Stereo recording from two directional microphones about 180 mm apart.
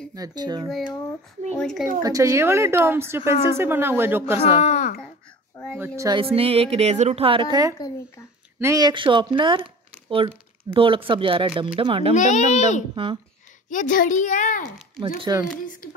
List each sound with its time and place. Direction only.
0.1 s speech: 20° right (ahead or behind)
0.7 s speech: centre (ahead or behind)
2.0 s speech: 20° right (ahead or behind)
4.6 s speech: 40° left (ahead or behind)
5.8 s speech: 15° right (ahead or behind)
6.1 s a woman's voice: 30° right (ahead or behind)
12.1 s a child's voice: 40° left (ahead or behind)
12.9 s speech: 30° right (ahead or behind)
13.7 s a child's voice: 50° left (ahead or behind)
15.1 s speech: 20° right (ahead or behind)